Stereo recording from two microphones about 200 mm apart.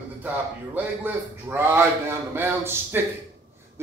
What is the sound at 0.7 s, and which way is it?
A man's voice, 10° right (ahead or behind).